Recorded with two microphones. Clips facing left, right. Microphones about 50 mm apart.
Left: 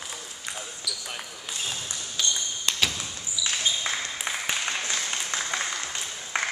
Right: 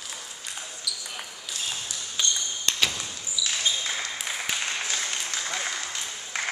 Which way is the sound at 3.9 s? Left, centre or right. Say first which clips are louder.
Left 1 dB; centre.